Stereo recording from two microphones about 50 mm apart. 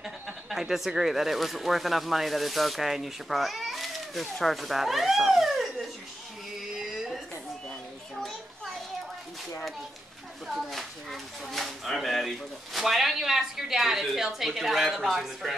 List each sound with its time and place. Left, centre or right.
0.0 s speech: centre
6.7 s a sound: centre
10.4 s speech: centre